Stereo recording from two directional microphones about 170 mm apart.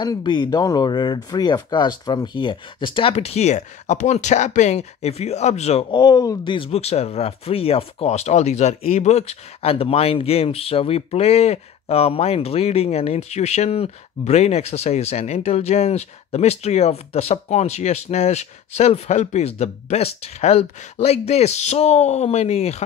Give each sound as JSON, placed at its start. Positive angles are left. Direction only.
{"t": 0.0, "sound": "speech", "side_deg": 25}